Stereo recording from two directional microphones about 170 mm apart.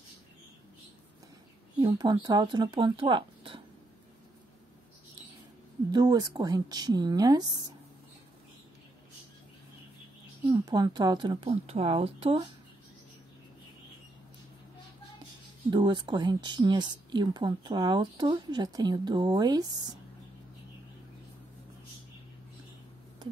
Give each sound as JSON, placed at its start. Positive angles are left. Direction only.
{"t": 1.8, "sound": "speech", "side_deg": -25}
{"t": 5.9, "sound": "speech", "side_deg": -25}
{"t": 10.5, "sound": "speech", "side_deg": -25}
{"t": 15.7, "sound": "speech", "side_deg": -25}